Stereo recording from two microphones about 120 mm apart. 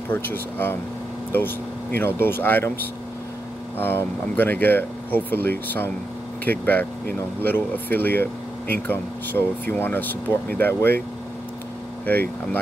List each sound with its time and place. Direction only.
0.1 s speech: 15° left (ahead or behind)
2.0 s speech: 20° left (ahead or behind)
12.1 s speech: 15° left (ahead or behind)